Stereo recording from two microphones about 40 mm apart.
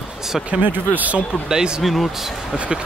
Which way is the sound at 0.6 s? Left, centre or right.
Right.